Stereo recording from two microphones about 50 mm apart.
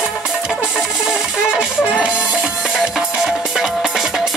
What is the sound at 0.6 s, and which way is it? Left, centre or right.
Music, centre.